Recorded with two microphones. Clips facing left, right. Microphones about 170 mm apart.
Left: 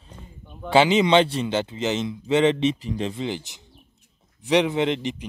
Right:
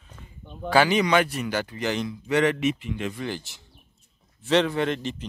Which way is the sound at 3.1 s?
20° left (ahead or behind).